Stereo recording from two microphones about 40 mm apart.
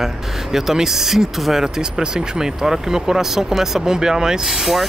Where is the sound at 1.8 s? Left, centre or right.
Centre.